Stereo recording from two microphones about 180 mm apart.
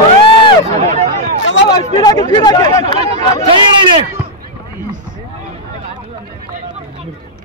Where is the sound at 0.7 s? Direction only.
35° right (ahead or behind).